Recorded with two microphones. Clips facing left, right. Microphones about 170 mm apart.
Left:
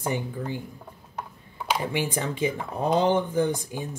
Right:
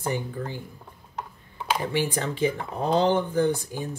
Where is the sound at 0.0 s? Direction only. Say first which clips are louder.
Even; 15° left (ahead or behind).